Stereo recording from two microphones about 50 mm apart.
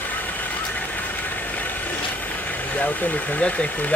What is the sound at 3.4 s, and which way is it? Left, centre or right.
Speech, left.